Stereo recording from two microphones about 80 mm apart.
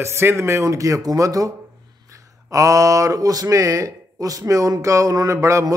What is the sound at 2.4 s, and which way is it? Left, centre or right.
Speech, right.